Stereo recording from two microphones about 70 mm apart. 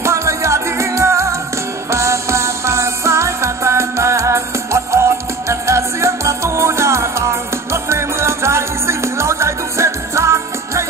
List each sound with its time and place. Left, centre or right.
0.0 s music: right